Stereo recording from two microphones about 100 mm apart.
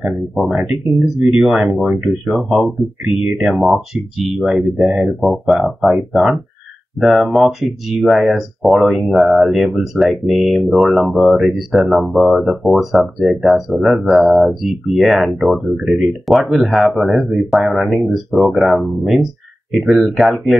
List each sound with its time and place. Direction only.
0.0 s speech: 5° right (ahead or behind)